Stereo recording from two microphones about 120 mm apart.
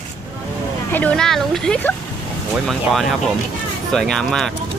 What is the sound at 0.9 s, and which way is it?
Speech, 10° left (ahead or behind).